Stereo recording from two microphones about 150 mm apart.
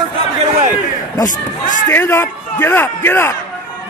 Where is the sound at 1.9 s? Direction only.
15° left (ahead or behind).